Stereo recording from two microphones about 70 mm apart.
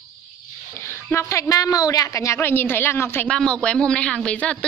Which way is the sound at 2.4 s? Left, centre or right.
Left.